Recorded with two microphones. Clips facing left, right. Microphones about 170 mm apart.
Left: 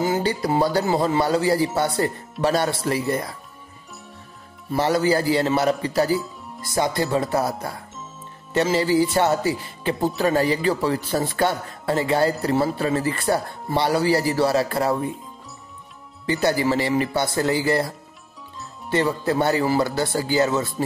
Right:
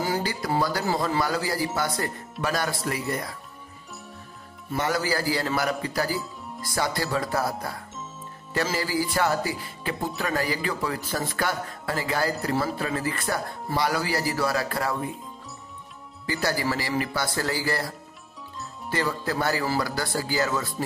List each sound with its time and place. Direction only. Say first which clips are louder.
0.0 s a man's voice: left 5 dB; 25° left (ahead or behind)
4.7 s a man's voice: left 6 dB; 30° left (ahead or behind)
16.3 s a man's voice: left 6 dB; 20° left (ahead or behind)